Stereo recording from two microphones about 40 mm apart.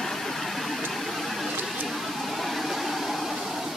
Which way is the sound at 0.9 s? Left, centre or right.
Centre.